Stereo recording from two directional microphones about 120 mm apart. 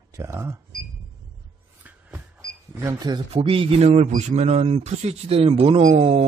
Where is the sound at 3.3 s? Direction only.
50° right (ahead or behind).